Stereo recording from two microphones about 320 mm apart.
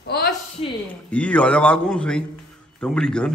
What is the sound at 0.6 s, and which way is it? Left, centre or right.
Speech, centre.